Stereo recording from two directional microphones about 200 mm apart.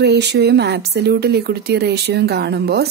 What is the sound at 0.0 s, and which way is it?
Speech, 55° right (ahead or behind).